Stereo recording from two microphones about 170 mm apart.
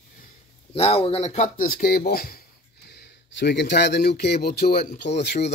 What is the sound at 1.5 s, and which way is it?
Speech, 55° left (ahead or behind).